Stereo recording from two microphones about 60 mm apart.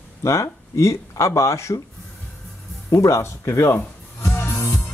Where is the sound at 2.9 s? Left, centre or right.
Left.